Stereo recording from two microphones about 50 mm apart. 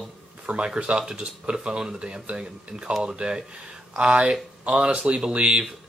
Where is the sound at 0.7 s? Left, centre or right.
Right.